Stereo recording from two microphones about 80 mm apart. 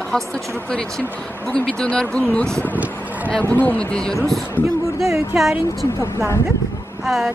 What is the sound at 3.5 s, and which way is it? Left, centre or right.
Speech, centre.